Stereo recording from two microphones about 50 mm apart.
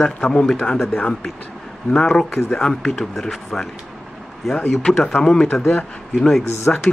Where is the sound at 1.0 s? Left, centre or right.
Left.